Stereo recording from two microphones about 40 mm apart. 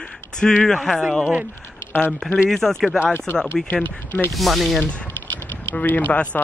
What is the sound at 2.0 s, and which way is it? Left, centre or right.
Speech, left.